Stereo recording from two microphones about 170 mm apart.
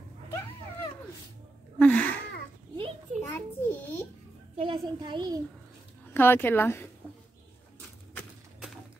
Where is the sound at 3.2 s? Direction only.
15° left (ahead or behind).